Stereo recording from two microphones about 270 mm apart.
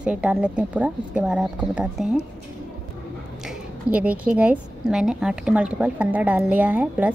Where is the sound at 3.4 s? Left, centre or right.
Centre.